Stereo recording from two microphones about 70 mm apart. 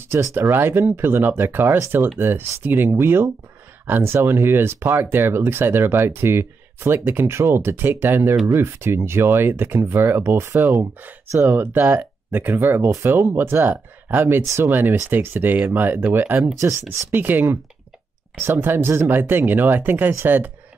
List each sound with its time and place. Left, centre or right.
0.1 s speech: right
2.7 s speech: right
11.4 s speech: right
16.5 s speech: right
17.1 s speech: right